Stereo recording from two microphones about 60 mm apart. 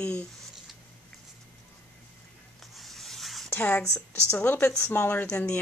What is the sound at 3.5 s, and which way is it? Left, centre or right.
Speech, left.